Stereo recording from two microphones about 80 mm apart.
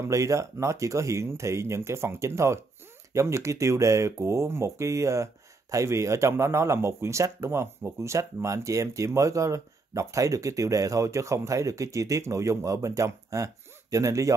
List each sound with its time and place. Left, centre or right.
0.0 s speech: right